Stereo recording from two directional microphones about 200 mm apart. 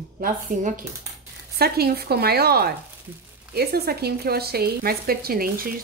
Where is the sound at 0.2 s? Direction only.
40° right (ahead or behind).